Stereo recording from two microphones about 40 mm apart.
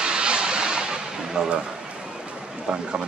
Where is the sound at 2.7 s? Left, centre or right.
Right.